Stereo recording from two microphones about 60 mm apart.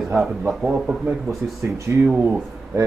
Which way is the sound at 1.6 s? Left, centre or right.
Right.